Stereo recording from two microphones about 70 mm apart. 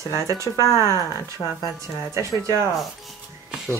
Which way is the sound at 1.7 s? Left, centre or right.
Right.